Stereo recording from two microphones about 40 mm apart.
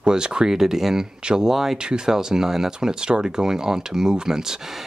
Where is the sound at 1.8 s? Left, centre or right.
Right.